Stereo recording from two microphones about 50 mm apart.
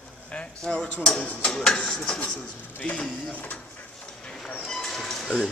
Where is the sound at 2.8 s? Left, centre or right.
Centre.